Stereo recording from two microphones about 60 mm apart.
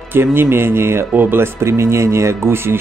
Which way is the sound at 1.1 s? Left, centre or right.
Right.